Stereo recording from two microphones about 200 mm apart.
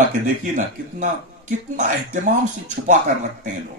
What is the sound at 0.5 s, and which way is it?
Speech, 40° right (ahead or behind).